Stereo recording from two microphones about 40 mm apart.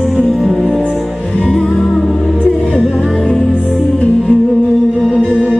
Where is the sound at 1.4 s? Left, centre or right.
Centre.